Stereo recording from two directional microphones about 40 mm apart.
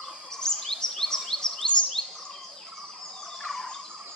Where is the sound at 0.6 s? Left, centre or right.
Centre.